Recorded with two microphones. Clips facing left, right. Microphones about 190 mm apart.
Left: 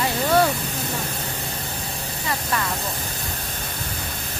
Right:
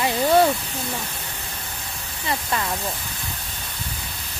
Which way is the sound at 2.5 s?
20° right (ahead or behind).